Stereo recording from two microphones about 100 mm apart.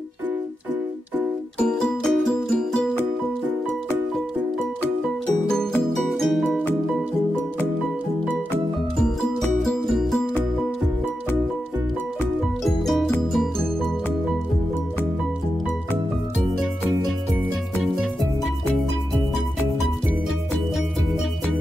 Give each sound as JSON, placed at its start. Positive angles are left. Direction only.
{"t": 1.6, "sound": "music", "side_deg": 5}
{"t": 5.5, "sound": "music", "side_deg": 5}
{"t": 9.6, "sound": "music", "side_deg": 0}
{"t": 12.6, "sound": "music", "side_deg": 0}